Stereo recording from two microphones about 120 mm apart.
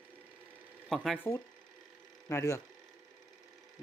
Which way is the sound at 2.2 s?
25° left (ahead or behind).